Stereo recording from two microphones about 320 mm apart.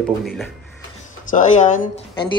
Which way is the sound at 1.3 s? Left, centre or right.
Left.